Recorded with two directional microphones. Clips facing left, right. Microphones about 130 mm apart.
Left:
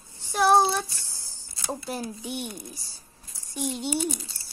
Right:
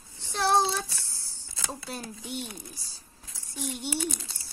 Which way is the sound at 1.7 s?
15° left (ahead or behind).